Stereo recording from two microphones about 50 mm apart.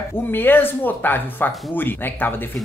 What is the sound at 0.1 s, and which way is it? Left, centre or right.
Speech, left.